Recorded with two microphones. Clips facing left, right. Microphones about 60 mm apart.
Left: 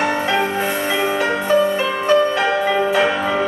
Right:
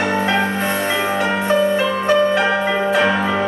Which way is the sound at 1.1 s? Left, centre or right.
Centre.